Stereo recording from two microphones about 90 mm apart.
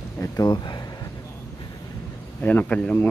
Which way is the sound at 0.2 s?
40° left (ahead or behind).